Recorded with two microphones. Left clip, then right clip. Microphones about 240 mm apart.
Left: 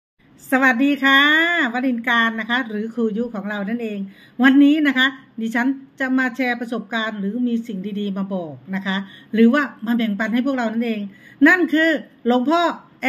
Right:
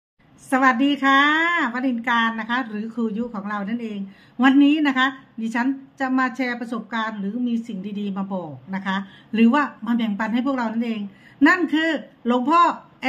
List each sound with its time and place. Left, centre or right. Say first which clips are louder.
0.5 s a woman's voice: left 1 dB; centre